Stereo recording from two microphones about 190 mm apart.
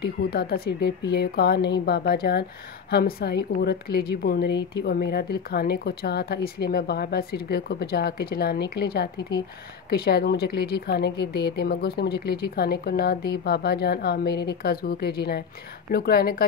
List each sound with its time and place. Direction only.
0.0 s a woman's voice: 60° left (ahead or behind)